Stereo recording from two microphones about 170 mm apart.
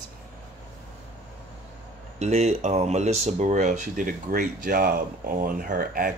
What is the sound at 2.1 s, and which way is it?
Speech, 40° right (ahead or behind).